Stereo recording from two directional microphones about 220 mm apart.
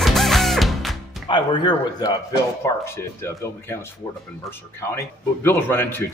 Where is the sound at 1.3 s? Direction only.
20° left (ahead or behind).